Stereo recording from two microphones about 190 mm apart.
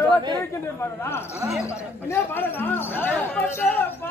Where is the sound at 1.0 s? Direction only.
15° left (ahead or behind).